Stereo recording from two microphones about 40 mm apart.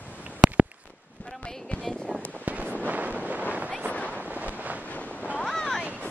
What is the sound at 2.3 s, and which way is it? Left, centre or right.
Wind noise, right.